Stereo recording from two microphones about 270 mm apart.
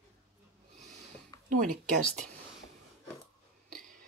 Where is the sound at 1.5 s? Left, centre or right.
Right.